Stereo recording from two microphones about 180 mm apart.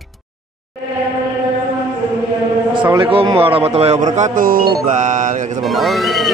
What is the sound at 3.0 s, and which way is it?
Speech, 30° right (ahead or behind).